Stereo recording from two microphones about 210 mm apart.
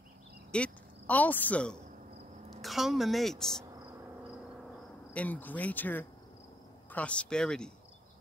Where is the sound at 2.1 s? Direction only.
30° right (ahead or behind).